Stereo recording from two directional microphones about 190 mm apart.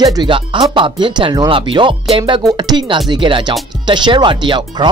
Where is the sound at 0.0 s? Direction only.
20° right (ahead or behind).